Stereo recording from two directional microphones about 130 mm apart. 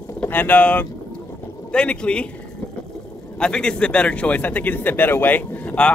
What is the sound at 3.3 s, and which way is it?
Speech, 5° left (ahead or behind).